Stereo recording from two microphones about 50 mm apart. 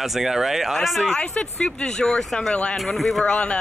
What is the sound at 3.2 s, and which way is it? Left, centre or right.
Speech, left.